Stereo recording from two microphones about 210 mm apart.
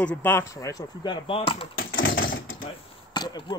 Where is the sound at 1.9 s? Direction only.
65° left (ahead or behind).